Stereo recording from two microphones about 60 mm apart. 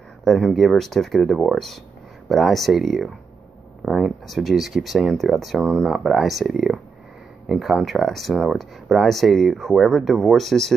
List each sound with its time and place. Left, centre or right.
0.2 s speech: centre
5.6 s speech: centre
5.9 s speech: centre